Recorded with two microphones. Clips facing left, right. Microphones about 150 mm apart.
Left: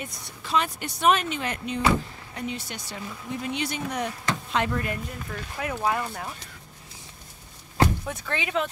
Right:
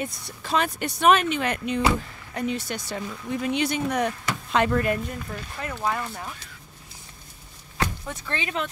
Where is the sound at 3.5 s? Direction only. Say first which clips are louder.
Right 6 dB; 90° right.